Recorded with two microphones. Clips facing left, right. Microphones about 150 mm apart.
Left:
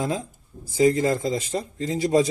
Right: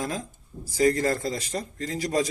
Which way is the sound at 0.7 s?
15° left (ahead or behind).